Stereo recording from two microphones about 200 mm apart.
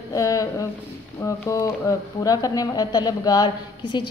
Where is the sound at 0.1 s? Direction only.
15° left (ahead or behind).